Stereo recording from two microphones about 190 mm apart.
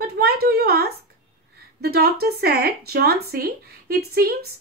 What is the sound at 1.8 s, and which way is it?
A woman's voice, 55° right (ahead or behind).